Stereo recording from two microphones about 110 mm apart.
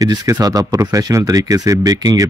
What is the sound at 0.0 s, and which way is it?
Speech, 35° right (ahead or behind).